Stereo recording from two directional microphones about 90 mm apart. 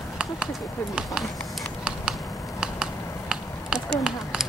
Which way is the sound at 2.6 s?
10° right (ahead or behind).